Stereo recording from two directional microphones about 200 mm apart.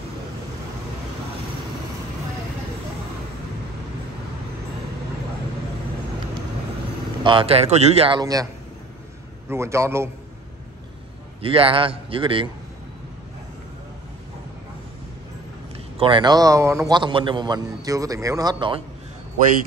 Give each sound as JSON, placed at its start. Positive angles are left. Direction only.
{"t": 7.2, "sound": "a man's voice", "side_deg": -25}
{"t": 9.5, "sound": "a man's voice", "side_deg": -15}
{"t": 11.4, "sound": "a man's voice", "side_deg": -25}
{"t": 16.0, "sound": "a man's voice", "side_deg": -25}